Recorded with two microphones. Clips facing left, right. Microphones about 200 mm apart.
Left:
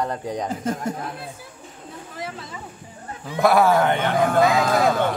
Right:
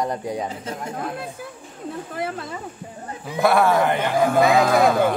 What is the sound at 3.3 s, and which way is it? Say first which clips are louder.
Speech: left 1 dB; centre (ahead or behind).